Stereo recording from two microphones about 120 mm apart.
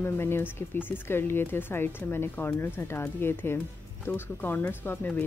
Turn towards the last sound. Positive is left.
turn(degrees=15)  # may be behind; listen again after turning